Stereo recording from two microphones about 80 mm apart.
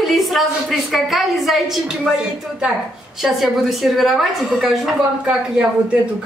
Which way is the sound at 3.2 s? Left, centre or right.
Centre.